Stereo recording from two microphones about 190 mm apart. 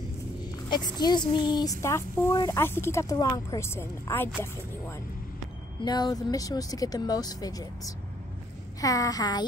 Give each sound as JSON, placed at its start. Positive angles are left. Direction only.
{"t": 0.7, "sound": "speech", "side_deg": 20}
{"t": 5.9, "sound": "speech", "side_deg": 20}